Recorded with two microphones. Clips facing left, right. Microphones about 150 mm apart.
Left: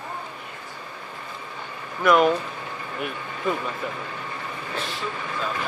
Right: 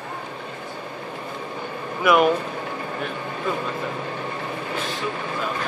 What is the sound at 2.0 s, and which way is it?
Speech, 5° right (ahead or behind).